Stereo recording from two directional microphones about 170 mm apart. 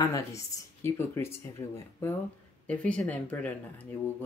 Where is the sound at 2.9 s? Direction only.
10° left (ahead or behind).